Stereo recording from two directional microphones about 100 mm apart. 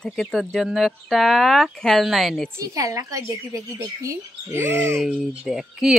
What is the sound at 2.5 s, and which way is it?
A woman's voice, 35° right (ahead or behind).